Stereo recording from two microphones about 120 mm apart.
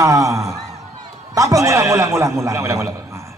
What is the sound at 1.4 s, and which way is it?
A man's voice, 25° right (ahead or behind).